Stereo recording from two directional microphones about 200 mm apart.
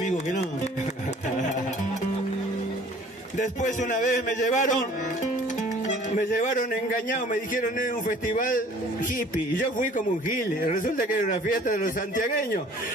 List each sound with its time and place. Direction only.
3.3 s a man's voice: 40° left (ahead or behind)
6.1 s a man's voice: 40° left (ahead or behind)
9.8 s a man's voice: 40° left (ahead or behind)